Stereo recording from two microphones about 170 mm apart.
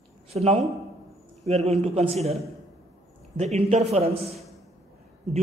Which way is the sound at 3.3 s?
40° right (ahead or behind).